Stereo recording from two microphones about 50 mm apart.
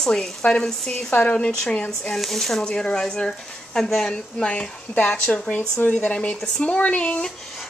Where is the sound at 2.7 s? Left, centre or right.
Centre.